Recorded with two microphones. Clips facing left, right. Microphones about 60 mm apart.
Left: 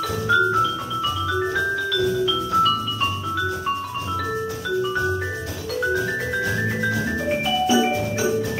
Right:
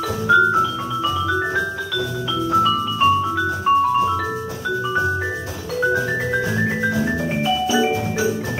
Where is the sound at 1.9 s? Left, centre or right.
Centre.